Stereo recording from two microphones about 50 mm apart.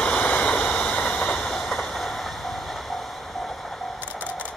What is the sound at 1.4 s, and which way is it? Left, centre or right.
Vehicle, centre.